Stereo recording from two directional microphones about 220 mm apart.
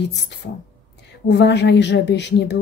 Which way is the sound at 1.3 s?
50° left (ahead or behind).